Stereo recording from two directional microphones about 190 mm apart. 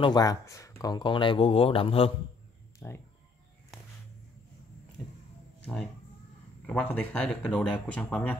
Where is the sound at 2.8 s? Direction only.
10° left (ahead or behind).